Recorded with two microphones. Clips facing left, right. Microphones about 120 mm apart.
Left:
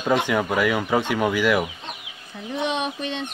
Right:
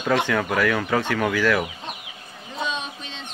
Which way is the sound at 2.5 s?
65° left (ahead or behind).